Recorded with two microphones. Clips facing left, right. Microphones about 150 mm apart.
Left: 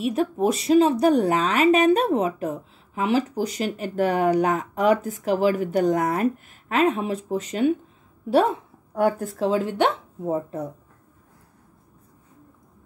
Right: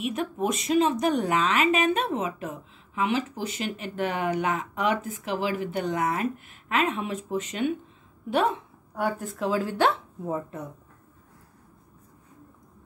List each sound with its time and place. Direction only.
0.0 s a woman's voice: 35° left (ahead or behind)
9.5 s speech: 20° left (ahead or behind)
10.2 s speech: 35° left (ahead or behind)